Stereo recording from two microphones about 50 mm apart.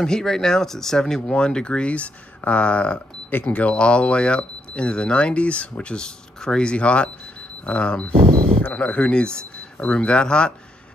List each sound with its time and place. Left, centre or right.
0.0 s speech: centre
3.3 s speech: left